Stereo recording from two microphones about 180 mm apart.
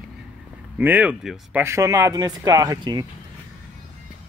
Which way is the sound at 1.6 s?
15° right (ahead or behind).